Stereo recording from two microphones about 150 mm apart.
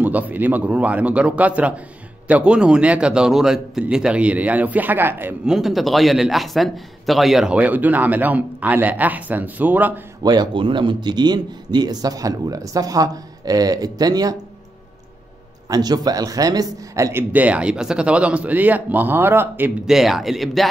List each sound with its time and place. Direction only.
0.0 s a man's voice: 10° right (ahead or behind)
5.5 s a man's voice: centre (ahead or behind)
10.2 s speech: 30° right (ahead or behind)
15.7 s a man's voice: 25° right (ahead or behind)
19.9 s a man's voice: centre (ahead or behind)